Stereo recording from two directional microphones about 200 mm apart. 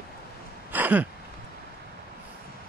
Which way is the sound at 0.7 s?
10° right (ahead or behind).